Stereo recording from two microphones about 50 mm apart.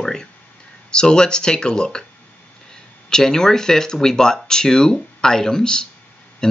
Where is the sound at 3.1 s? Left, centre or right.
Centre.